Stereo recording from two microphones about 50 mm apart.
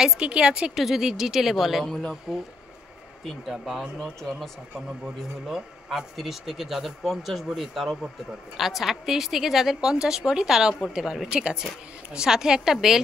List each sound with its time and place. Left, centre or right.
0.0 s a woman's voice: centre
0.7 s speech: centre
1.9 s speech: centre
3.4 s speech: centre
4.0 s a woman's voice: centre